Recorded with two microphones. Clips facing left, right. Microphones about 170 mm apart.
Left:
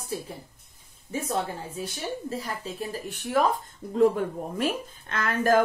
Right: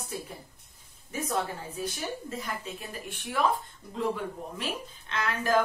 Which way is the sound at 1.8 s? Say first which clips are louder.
Left 1 dB; 35° left (ahead or behind).